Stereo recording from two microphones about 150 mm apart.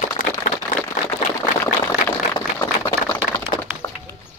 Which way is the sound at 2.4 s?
30° left (ahead or behind).